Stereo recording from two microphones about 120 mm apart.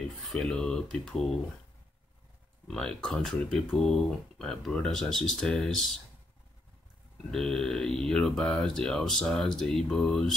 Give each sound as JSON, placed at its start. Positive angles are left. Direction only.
{"t": 0.2, "sound": "speech", "side_deg": 5}
{"t": 2.7, "sound": "speech", "side_deg": 5}
{"t": 7.2, "sound": "speech", "side_deg": 5}